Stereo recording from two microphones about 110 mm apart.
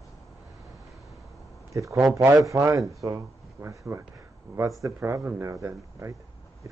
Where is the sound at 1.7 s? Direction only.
30° right (ahead or behind).